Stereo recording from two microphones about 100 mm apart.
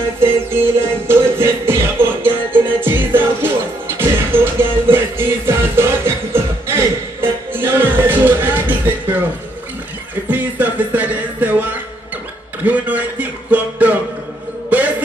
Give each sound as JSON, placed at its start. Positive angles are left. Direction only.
{"t": 0.2, "sound": "music", "side_deg": -25}
{"t": 10.3, "sound": "music", "side_deg": -15}
{"t": 12.6, "sound": "a sound", "side_deg": -15}
{"t": 14.7, "sound": "music", "side_deg": -15}